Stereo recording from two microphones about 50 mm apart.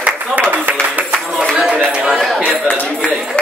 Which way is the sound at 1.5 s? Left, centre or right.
Right.